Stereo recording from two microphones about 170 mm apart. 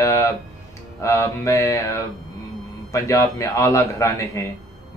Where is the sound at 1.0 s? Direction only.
15° left (ahead or behind).